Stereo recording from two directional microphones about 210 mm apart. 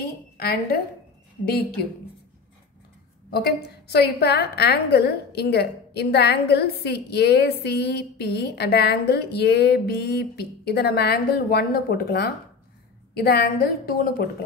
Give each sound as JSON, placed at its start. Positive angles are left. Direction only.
{"t": 0.4, "sound": "a woman's voice", "side_deg": 50}
{"t": 3.3, "sound": "a woman's voice", "side_deg": 50}